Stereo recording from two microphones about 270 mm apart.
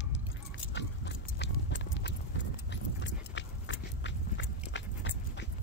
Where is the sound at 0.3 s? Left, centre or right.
Left.